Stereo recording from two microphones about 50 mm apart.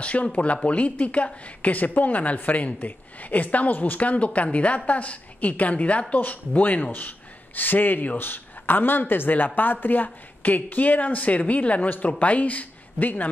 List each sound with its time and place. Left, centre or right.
0.0 s a woman's voice: left